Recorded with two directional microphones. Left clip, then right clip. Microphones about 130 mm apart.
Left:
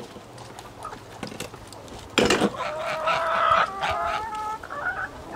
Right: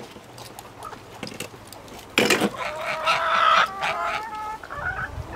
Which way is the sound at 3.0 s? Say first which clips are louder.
Right 3 dB; 35° right (ahead or behind).